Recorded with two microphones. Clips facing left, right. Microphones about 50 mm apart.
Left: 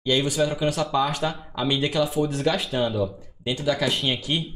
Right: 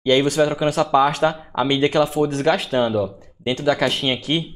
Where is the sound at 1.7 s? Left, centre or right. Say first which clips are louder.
Right 5 dB; right.